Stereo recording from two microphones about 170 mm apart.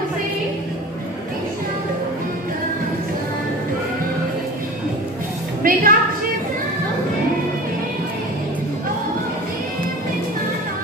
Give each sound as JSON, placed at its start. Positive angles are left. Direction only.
{"t": 5.6, "sound": "a woman's voice", "side_deg": -55}